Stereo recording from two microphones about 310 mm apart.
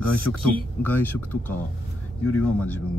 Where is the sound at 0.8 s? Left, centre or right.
Centre.